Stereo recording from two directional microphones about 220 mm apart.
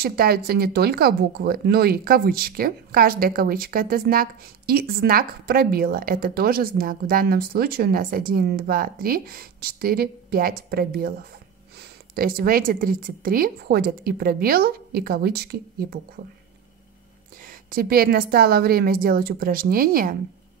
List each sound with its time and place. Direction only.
0.0 s speech: 45° right (ahead or behind)
12.2 s speech: 40° right (ahead or behind)
17.6 s speech: 40° right (ahead or behind)